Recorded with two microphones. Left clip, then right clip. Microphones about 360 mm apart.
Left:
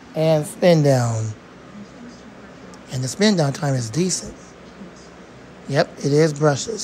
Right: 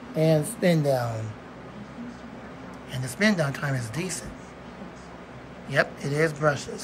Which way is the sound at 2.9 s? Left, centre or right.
Centre.